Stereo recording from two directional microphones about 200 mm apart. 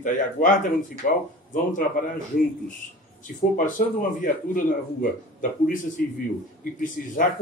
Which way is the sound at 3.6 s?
40° left (ahead or behind).